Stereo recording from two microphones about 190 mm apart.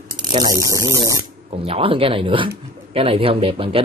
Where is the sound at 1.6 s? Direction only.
30° right (ahead or behind).